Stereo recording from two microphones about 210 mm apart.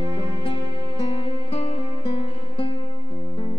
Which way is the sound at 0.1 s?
25° left (ahead or behind).